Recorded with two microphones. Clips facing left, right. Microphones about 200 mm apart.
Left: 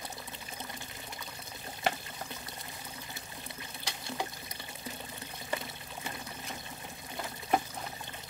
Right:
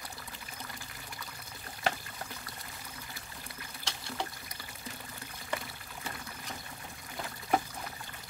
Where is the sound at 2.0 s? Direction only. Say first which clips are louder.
Left 1 dB; 25° left (ahead or behind).